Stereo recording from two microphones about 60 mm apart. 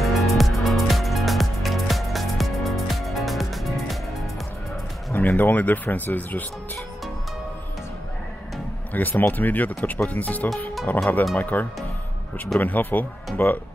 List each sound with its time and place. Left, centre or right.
0.0 s music: centre
5.1 s speech: left
8.9 s speech: left